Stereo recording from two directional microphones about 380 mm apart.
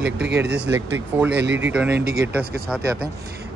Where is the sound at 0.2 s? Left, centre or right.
Right.